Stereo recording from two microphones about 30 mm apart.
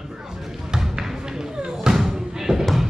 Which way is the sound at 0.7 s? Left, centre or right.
Centre.